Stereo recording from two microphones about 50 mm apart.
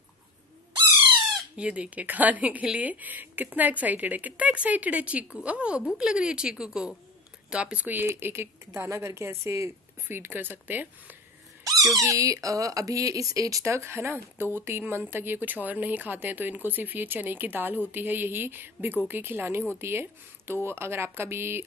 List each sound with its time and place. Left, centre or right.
1.6 s a woman's voice: right
8.2 s a woman's voice: right
8.9 s speech: right
10.0 s speech: right
12.0 s speech: right
13.8 s a woman's voice: right